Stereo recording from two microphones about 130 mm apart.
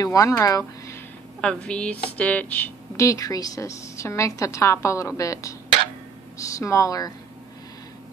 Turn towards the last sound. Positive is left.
turn(degrees=30)  # may be behind; listen again after turning